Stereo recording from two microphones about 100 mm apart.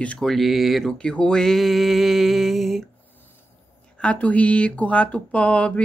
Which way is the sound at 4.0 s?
15° left (ahead or behind).